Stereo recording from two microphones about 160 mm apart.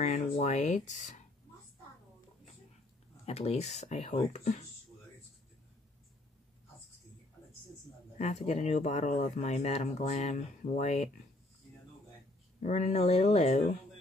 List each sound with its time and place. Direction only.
0.0 s speech: 45° left (ahead or behind)
3.3 s speech: 40° left (ahead or behind)
8.2 s speech: 45° left (ahead or behind)
12.5 s speech: 50° left (ahead or behind)